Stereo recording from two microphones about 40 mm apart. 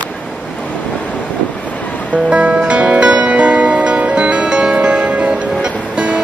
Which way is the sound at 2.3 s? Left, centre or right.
Right.